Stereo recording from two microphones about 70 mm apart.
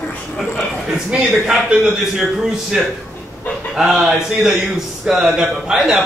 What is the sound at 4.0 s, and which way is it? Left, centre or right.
Speech, centre.